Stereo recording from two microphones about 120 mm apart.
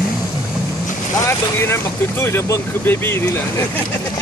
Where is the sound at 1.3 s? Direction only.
20° left (ahead or behind).